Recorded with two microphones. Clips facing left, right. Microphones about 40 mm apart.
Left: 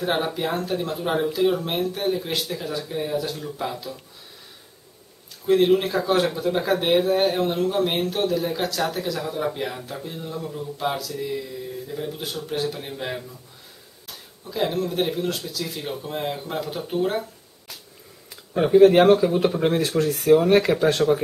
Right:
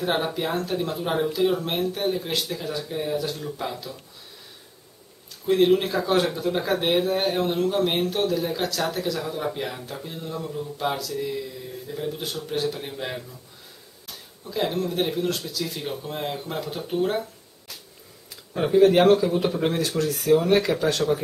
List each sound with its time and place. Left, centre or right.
0.0 s speech: centre
5.5 s speech: centre
18.3 s a sound: centre
18.9 s speech: centre